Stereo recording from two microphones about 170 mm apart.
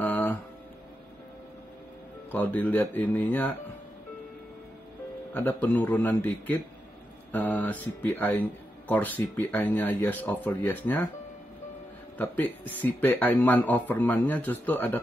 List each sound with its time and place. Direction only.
2.3 s speech: 10° left (ahead or behind)
5.3 s speech: 10° left (ahead or behind)
12.2 s speech: 10° left (ahead or behind)